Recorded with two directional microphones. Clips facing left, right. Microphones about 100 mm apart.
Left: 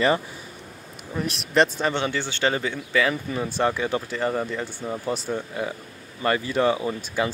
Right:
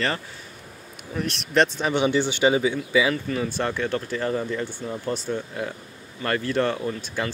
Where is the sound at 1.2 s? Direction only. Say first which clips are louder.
Even; 5° left (ahead or behind).